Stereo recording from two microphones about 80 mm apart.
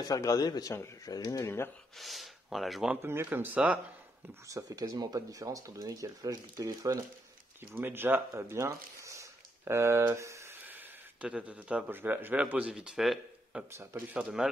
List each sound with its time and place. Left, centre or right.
0.0 s speech: left
1.4 s speech: left
2.0 s speech: centre
3.0 s speech: right
4.5 s speech: right
4.8 s speech: right
7.7 s speech: right
10.7 s a sound: right
11.2 s a man's voice: centre
13.7 s a man's voice: right
14.1 s a man's voice: centre